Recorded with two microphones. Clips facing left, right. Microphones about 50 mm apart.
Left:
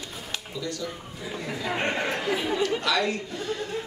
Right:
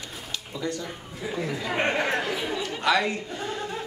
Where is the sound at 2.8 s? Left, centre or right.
Right.